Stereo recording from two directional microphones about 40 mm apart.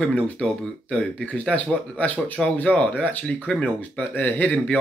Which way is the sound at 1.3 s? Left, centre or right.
Left.